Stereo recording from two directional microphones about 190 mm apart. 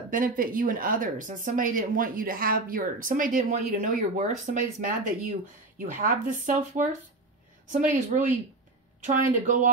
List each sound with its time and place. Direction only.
0.1 s speech: 45° right (ahead or behind)
7.9 s speech: 40° right (ahead or behind)